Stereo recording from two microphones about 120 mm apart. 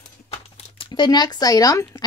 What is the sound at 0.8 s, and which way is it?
Speech, 40° left (ahead or behind).